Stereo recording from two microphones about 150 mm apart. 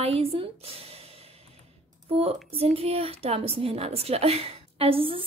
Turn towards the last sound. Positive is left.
turn(degrees=-40)  # may be behind; listen again after turning